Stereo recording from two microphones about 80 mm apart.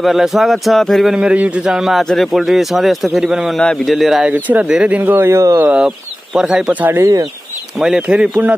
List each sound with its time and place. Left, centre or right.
0.0 s a man's voice: centre
1.1 s a man's voice: centre
3.5 s a man's voice: centre
4.3 s speech: right
5.8 s speech: centre